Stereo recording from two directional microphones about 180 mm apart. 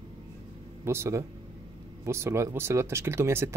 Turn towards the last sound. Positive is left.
turn(degrees=-15)  # may be behind; listen again after turning